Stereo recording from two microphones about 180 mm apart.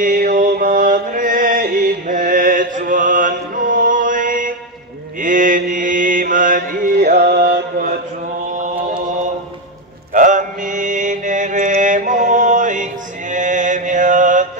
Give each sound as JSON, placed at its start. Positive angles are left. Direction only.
{"t": 0.0, "sound": "music", "side_deg": -50}
{"t": 5.2, "sound": "mantra", "side_deg": -45}
{"t": 7.2, "sound": "music", "side_deg": -70}
{"t": 8.5, "sound": "chant", "side_deg": -45}
{"t": 10.1, "sound": "mantra", "side_deg": -45}